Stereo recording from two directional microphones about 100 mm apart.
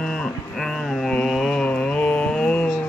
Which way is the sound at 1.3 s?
5° left (ahead or behind).